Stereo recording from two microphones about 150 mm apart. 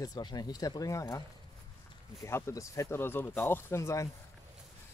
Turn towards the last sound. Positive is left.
turn(degrees=20)  # may be behind; listen again after turning